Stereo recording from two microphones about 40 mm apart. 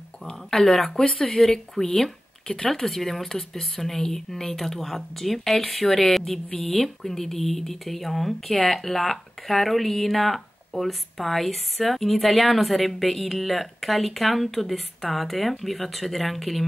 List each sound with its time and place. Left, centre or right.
0.3 s a sound: centre
0.7 s speech: centre
2.4 s speech: centre
2.7 s speech: centre